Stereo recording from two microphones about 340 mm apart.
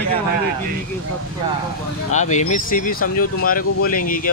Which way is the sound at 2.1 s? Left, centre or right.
Left.